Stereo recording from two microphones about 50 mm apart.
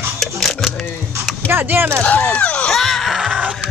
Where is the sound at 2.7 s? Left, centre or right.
Centre.